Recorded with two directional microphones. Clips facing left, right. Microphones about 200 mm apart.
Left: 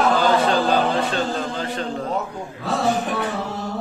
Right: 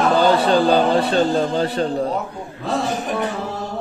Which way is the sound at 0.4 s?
35° right (ahead or behind).